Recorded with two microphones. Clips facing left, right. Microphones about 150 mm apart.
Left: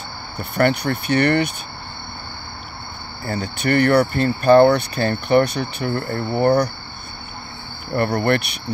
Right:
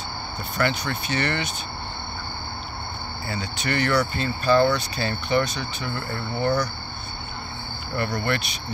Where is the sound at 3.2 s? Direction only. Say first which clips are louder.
Left 7 dB; 50° left (ahead or behind).